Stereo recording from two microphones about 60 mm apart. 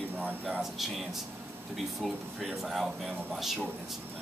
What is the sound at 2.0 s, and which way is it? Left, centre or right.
Speech, centre.